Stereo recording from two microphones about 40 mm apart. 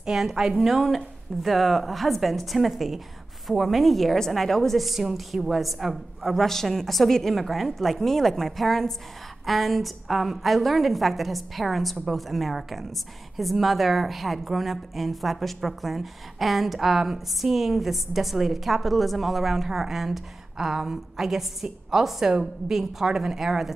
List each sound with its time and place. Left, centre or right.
0.0 s a woman's voice: centre